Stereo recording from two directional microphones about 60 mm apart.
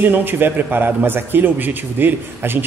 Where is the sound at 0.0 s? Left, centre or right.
Right.